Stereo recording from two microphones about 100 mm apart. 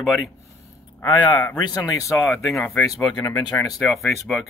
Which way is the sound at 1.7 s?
35° left (ahead or behind).